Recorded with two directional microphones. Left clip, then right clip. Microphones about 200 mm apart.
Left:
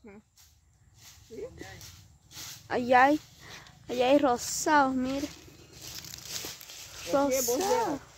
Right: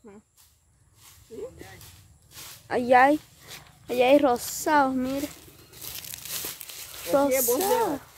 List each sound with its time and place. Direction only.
2.7 s speech: 5° right (ahead or behind)
5.9 s crumpling: 40° right (ahead or behind)
7.1 s speech: 10° right (ahead or behind)